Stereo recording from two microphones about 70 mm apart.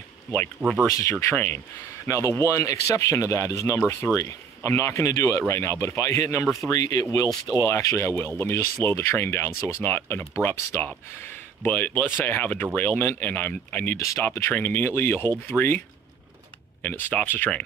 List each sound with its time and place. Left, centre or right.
0.6 s speech: right
1.3 s speech: left
2.0 s speech: left
6.7 s speech: left
13.9 s speech: left
14.5 s speech: left
16.8 s speech: left